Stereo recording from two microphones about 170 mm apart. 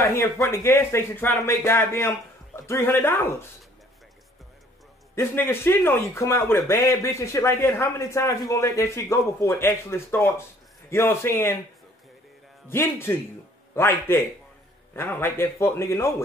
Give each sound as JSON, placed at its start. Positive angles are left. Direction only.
{"t": 0.0, "sound": "speech", "side_deg": 15}
{"t": 5.1, "sound": "speech", "side_deg": 15}
{"t": 12.6, "sound": "speech", "side_deg": 15}